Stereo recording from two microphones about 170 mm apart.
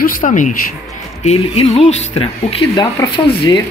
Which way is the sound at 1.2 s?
35° left (ahead or behind).